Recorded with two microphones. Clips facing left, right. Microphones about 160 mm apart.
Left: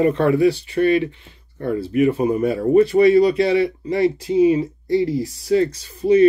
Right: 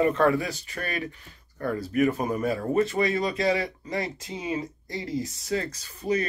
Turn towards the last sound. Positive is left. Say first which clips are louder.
# left 14 dB
turn(degrees=30)  # may be behind; listen again after turning